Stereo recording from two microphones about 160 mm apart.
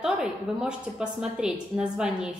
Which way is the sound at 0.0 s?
5° right (ahead or behind).